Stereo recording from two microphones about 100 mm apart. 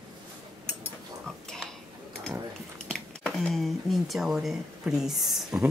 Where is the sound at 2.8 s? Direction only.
5° left (ahead or behind).